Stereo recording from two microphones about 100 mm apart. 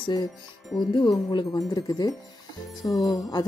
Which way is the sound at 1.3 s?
40° left (ahead or behind).